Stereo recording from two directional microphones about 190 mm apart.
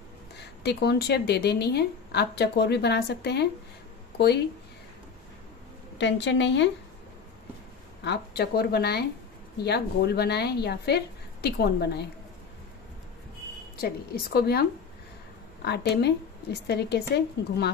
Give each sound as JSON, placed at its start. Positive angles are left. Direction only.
{"t": 0.7, "sound": "a woman's voice", "side_deg": 60}
{"t": 5.9, "sound": "a woman's voice", "side_deg": 65}
{"t": 8.0, "sound": "a woman's voice", "side_deg": 60}
{"t": 13.7, "sound": "a woman's voice", "side_deg": 55}